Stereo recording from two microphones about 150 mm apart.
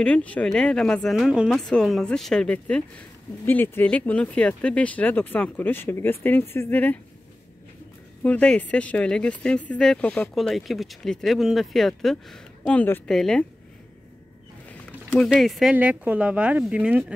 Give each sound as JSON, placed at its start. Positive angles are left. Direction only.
{"t": 0.0, "sound": "speech", "side_deg": 10}
{"t": 8.2, "sound": "speech", "side_deg": 10}
{"t": 15.0, "sound": "speech", "side_deg": 0}